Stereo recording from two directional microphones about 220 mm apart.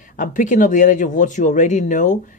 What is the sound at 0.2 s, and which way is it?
Speech, 35° left (ahead or behind).